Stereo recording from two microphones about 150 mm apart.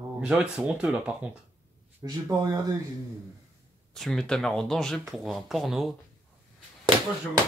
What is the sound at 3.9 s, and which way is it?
Speech, 5° left (ahead or behind).